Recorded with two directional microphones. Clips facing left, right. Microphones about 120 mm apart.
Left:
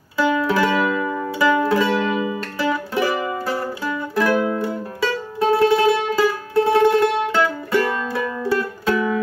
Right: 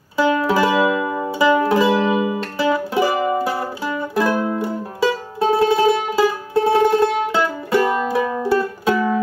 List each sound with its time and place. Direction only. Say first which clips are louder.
0.2 s music: right 2 dB; 15° right (ahead or behind)